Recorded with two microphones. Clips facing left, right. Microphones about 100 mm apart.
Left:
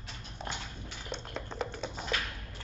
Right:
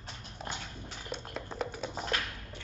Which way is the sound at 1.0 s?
5° right (ahead or behind).